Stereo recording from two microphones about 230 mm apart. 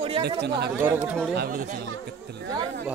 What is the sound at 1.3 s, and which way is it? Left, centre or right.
Speech, right.